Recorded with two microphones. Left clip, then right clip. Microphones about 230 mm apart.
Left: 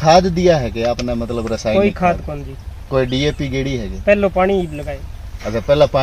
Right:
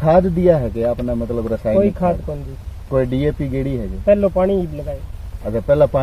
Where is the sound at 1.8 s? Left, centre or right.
Centre.